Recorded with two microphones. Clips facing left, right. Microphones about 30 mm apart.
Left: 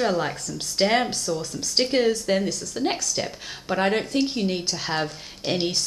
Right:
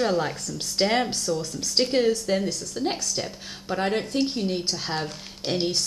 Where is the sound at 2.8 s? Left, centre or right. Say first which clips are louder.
Left 3 dB; left.